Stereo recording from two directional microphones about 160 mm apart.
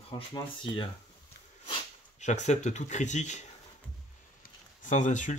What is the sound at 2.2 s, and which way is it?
Speech, 45° left (ahead or behind).